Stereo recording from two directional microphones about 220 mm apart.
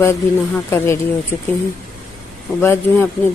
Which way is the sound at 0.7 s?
10° left (ahead or behind).